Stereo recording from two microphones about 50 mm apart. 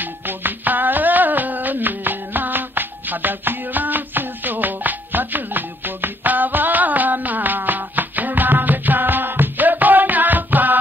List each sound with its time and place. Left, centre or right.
0.0 s music: right